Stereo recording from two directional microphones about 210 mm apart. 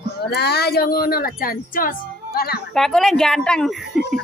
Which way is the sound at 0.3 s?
50° left (ahead or behind).